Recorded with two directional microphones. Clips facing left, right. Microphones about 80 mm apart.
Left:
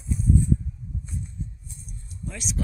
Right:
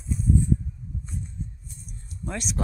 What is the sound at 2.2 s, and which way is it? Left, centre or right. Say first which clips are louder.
Speech: right 3 dB; right.